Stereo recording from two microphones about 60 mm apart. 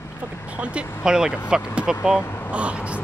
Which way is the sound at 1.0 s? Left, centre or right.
Centre.